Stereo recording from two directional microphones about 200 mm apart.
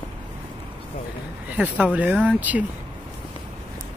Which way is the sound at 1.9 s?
5° right (ahead or behind).